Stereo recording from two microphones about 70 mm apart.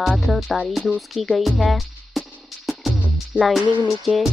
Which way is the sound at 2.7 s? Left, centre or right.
Centre.